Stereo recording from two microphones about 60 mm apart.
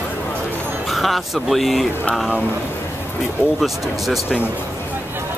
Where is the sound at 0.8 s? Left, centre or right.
Centre.